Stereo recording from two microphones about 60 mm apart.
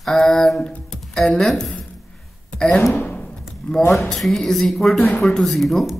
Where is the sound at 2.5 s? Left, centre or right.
Centre.